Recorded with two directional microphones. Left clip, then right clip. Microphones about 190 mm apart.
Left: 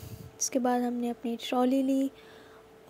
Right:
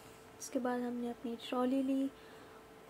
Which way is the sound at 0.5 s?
35° left (ahead or behind).